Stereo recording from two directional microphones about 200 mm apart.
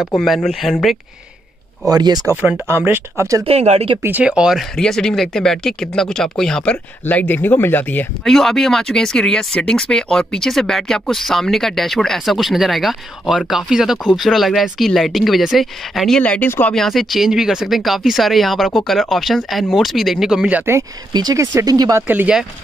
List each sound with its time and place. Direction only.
0.1 s speech: centre (ahead or behind)
1.9 s speech: 20° right (ahead or behind)
3.4 s speech: 30° right (ahead or behind)
4.0 s speech: 5° right (ahead or behind)